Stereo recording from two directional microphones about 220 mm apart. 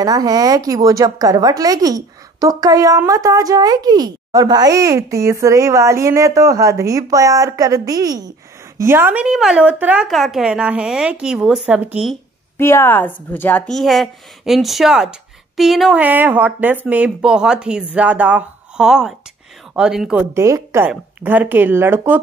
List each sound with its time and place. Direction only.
0.0 s a woman's voice: 15° right (ahead or behind)
12.5 s a woman's voice: 10° left (ahead or behind); by 22.2 s 10° right (ahead or behind)